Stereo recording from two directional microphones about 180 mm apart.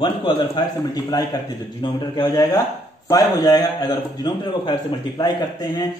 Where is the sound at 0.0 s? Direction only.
25° left (ahead or behind).